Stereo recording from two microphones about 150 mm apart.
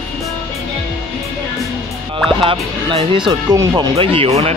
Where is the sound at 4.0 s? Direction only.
40° right (ahead or behind).